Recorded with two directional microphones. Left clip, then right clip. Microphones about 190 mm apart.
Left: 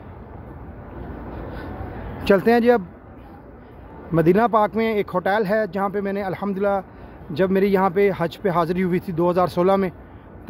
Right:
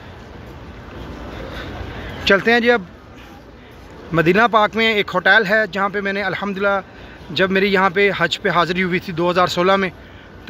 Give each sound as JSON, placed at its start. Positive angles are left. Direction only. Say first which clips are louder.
{"t": 2.2, "sound": "speech", "louder": "right 2 dB", "side_deg": 20}
{"t": 4.1, "sound": "speech", "louder": "right 3 dB", "side_deg": 10}